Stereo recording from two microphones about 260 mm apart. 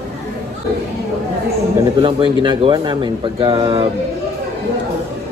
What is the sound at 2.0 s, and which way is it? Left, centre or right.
Speech, centre.